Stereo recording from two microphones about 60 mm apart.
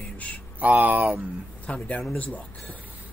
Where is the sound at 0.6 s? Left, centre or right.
Right.